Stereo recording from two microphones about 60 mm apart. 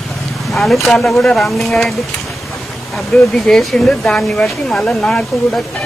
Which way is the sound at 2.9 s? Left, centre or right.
Centre.